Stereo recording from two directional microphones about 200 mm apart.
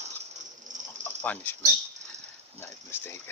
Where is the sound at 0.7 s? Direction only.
40° right (ahead or behind).